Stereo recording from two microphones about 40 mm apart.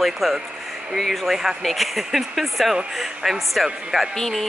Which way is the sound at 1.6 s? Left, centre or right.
Centre.